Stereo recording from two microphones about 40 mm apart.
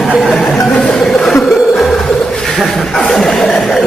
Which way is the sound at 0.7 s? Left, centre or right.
Centre.